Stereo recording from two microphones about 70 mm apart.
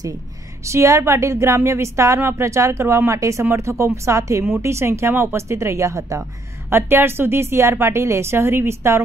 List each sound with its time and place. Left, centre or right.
0.7 s a woman's voice: right
6.7 s a woman's voice: right